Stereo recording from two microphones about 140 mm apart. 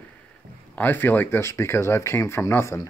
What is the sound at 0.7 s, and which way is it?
Speech, 15° left (ahead or behind).